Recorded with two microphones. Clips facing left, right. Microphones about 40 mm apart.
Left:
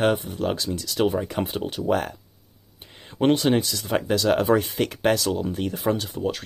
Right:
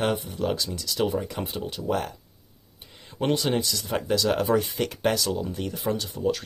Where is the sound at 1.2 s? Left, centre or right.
Left.